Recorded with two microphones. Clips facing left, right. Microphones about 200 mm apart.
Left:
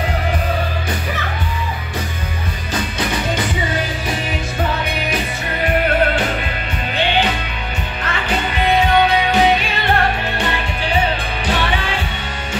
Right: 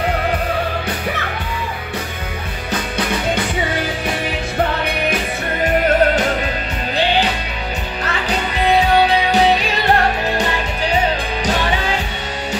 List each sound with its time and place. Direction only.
8.7 s music: 35° right (ahead or behind)